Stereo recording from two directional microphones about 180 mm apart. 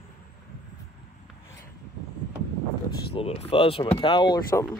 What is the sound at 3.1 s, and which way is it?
Speech, 35° left (ahead or behind).